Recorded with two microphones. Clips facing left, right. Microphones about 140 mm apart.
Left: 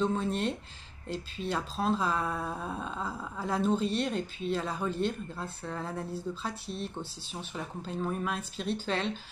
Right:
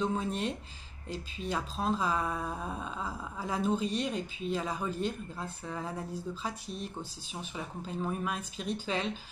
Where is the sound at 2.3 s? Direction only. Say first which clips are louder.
Left 1 dB; 5° left (ahead or behind).